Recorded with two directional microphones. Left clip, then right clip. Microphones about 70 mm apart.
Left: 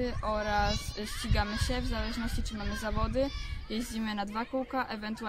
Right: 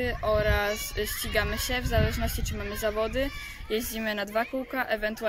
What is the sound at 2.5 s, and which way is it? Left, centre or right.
Speech, centre.